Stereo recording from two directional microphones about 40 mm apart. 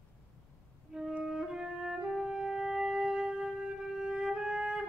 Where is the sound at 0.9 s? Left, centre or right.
Centre.